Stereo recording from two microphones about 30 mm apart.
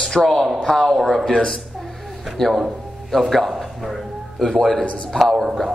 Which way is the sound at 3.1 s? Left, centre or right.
Centre.